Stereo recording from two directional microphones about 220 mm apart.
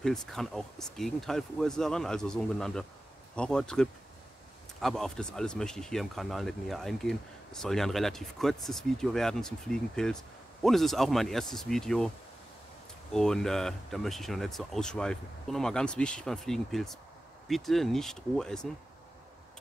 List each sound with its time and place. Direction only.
0.0 s speech: centre (ahead or behind)
13.1 s speech: centre (ahead or behind)